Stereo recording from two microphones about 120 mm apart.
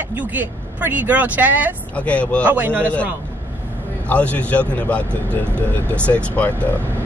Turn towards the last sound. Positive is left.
turn(degrees=10)  # may be behind; listen again after turning